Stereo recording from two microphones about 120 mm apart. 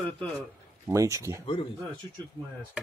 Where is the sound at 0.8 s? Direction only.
25° right (ahead or behind).